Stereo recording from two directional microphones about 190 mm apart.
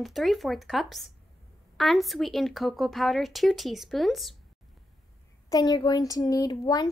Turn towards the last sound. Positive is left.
turn(degrees=20)  # may be behind; listen again after turning